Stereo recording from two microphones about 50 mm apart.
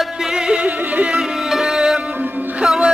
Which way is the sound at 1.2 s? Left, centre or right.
Centre.